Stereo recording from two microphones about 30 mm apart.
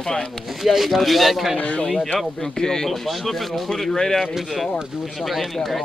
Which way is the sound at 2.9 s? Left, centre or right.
Centre.